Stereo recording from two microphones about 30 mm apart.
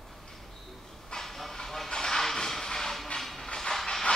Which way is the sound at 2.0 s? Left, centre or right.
Centre.